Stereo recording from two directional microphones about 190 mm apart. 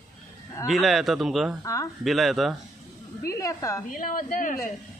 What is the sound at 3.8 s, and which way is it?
Speech, 45° left (ahead or behind).